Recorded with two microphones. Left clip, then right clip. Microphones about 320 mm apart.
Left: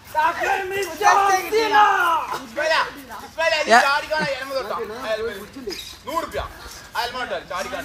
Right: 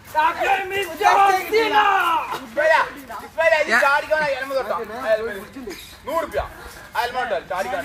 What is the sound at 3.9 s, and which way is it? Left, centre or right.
Speech, right.